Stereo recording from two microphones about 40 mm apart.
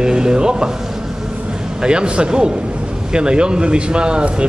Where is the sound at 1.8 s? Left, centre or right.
Right.